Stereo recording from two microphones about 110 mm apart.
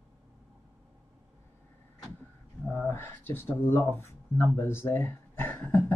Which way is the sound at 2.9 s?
20° left (ahead or behind).